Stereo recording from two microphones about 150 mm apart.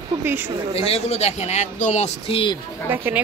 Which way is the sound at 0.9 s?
45° left (ahead or behind).